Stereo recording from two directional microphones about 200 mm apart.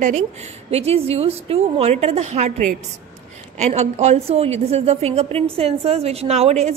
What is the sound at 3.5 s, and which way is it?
A woman's voice, 35° right (ahead or behind).